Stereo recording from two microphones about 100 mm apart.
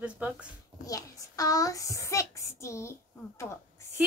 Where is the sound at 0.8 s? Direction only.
35° left (ahead or behind).